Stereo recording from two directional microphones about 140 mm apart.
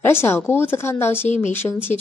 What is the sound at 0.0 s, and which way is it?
Speech, 15° left (ahead or behind).